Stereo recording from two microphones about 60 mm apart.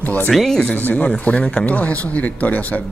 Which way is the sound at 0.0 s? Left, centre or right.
Left.